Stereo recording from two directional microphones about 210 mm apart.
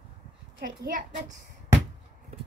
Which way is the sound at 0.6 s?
40° right (ahead or behind).